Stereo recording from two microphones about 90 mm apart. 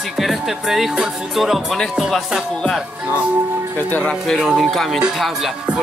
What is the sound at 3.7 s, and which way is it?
Speech, 20° left (ahead or behind).